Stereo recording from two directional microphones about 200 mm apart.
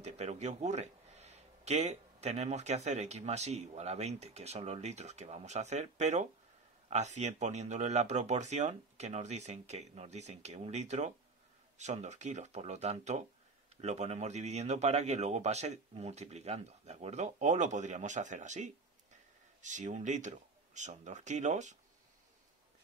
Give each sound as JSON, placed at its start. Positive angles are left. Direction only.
{"t": 0.0, "sound": "speech", "side_deg": -35}